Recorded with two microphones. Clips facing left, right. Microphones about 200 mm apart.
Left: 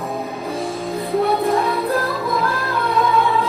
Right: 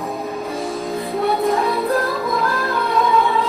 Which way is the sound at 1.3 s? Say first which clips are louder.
Even; centre (ahead or behind).